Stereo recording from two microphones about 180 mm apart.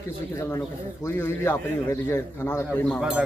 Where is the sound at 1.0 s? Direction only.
15° left (ahead or behind).